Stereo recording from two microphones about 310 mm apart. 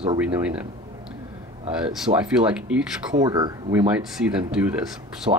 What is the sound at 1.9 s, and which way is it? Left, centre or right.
Speech, centre.